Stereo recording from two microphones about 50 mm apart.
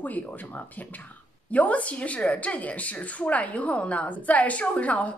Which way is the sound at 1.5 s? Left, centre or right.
Left.